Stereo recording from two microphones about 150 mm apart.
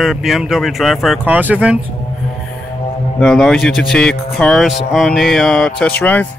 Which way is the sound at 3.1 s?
5° left (ahead or behind).